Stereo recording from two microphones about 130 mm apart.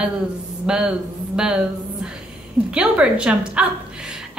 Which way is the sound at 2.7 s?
5° right (ahead or behind).